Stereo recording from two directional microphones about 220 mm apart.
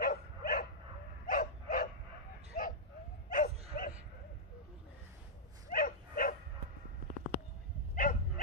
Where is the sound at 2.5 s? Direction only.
35° left (ahead or behind).